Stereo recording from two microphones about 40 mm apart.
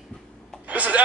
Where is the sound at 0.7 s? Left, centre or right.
Right.